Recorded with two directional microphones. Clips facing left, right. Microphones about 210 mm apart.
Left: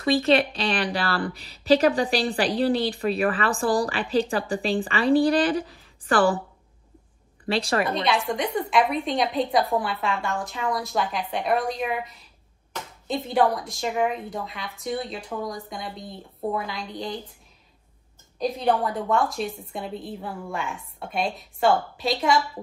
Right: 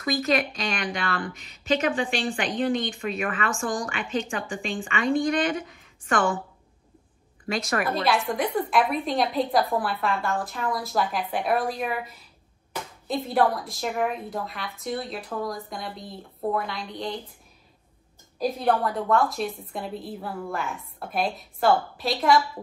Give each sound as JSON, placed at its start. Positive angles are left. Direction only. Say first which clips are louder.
{"t": 0.0, "sound": "speech", "louder": "left 4 dB", "side_deg": 30}
{"t": 7.4, "sound": "speech", "louder": "left 3 dB", "side_deg": 30}
{"t": 7.9, "sound": "a woman's voice", "louder": "even", "side_deg": 0}
{"t": 13.1, "sound": "a woman's voice", "louder": "left 1 dB", "side_deg": 0}
{"t": 18.4, "sound": "a woman's voice", "louder": "even", "side_deg": 0}